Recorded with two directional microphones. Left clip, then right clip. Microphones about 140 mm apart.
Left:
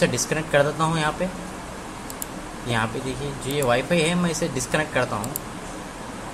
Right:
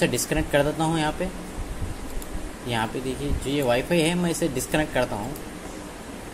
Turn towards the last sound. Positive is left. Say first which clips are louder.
# left 1 dB
turn(degrees=-35)  # may be behind; listen again after turning